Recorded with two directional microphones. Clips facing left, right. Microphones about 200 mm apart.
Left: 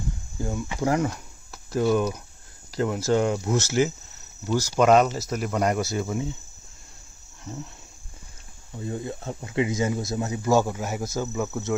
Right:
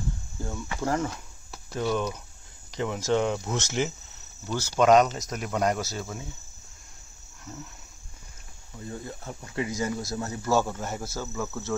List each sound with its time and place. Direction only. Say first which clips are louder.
0.4 s speech: left 5 dB; 15° left (ahead or behind)
5.9 s speech: left 8 dB; 15° left (ahead or behind)
8.8 s speech: left 6 dB; 25° left (ahead or behind)